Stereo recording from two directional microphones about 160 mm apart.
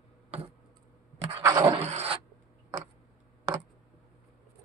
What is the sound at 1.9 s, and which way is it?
Rub, 45° right (ahead or behind).